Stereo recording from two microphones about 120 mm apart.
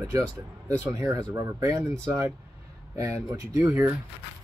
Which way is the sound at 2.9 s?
25° right (ahead or behind).